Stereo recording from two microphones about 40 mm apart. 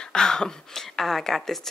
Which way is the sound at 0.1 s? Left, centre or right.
Centre.